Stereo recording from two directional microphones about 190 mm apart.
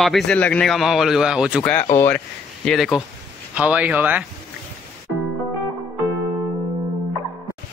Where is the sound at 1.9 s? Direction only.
10° left (ahead or behind).